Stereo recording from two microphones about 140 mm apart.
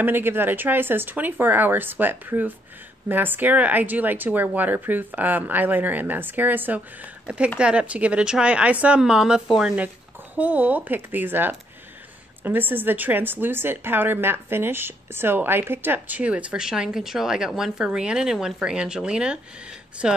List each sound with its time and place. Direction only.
0.0 s a woman's voice: 15° right (ahead or behind)